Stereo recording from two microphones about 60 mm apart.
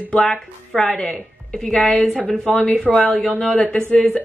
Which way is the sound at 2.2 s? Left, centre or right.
Left.